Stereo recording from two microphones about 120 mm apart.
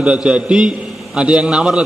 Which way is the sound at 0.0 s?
10° right (ahead or behind).